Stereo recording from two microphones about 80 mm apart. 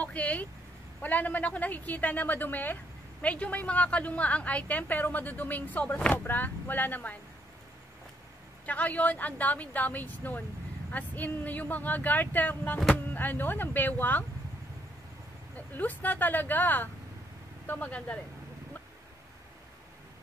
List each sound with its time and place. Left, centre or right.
0.0 s a woman's voice: centre
8.6 s a woman's voice: centre
15.5 s a woman's voice: left